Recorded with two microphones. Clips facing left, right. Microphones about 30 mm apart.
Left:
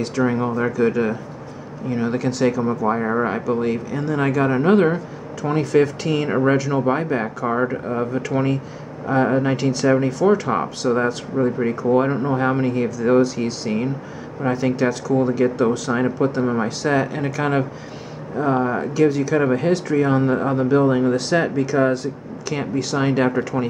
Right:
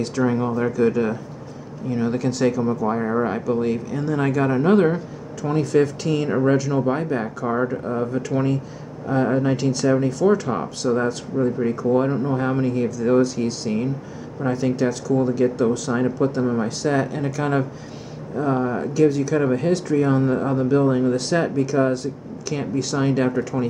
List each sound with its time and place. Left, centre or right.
0.0 s speech: centre; by 3.3 s left
3.3 s speech: centre
11.3 s speech: left
11.6 s speech: centre